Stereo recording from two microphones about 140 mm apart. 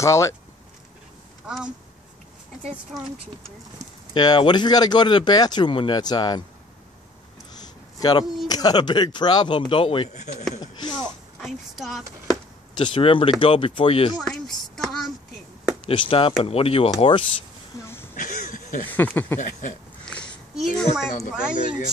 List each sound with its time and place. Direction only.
0.0 s speech: 20° left (ahead or behind)
2.9 s speech: centre (ahead or behind)
4.1 s speech: 35° left (ahead or behind)
7.6 s a sound: 30° left (ahead or behind)
8.5 s speech: 30° left (ahead or behind)
11.4 s speech: centre (ahead or behind)
12.3 s a sound: 35° left (ahead or behind)
13.4 s speech: 40° left (ahead or behind)
14.1 s a sound: 5° left (ahead or behind)
15.8 s speech: 35° left (ahead or behind)
18.1 s a sound: 65° left (ahead or behind)
18.9 s speech: 10° left (ahead or behind)
19.4 s speech: 65° left (ahead or behind)
20.1 s speech: 5° left (ahead or behind)